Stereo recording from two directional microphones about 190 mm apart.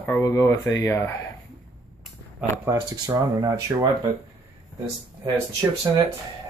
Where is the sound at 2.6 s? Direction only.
20° right (ahead or behind).